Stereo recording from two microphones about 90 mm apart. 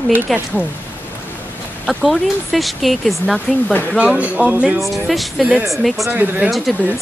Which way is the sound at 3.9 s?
15° right (ahead or behind).